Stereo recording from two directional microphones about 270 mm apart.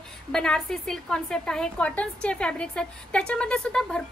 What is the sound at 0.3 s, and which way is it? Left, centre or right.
A woman's voice, centre.